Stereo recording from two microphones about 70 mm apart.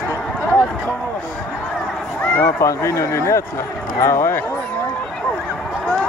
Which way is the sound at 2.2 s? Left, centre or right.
Left.